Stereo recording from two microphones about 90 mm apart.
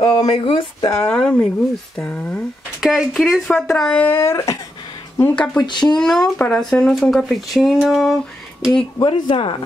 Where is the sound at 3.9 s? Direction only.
25° left (ahead or behind).